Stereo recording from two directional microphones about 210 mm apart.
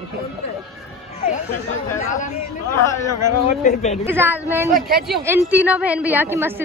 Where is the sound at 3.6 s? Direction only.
35° left (ahead or behind).